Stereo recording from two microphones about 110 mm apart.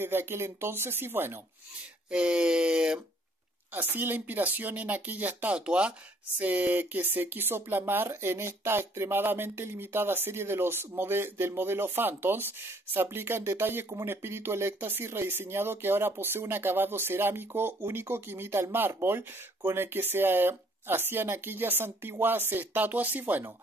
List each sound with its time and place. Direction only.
0.0 s speech: 20° right (ahead or behind)
2.0 s speech: 10° right (ahead or behind)
3.7 s speech: 20° right (ahead or behind)